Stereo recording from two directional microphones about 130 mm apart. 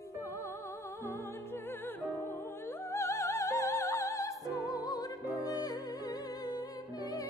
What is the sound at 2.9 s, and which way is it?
Opera, 20° left (ahead or behind).